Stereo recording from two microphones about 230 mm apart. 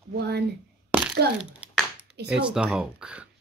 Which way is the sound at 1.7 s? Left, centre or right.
Centre.